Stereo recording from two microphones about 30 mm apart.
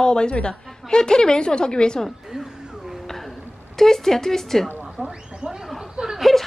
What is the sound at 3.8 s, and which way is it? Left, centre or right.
Speech, centre.